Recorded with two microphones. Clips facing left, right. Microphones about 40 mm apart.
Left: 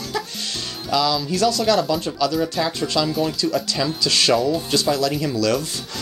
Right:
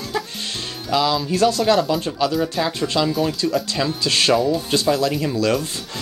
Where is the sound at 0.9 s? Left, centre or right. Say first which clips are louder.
Right 1 dB; right.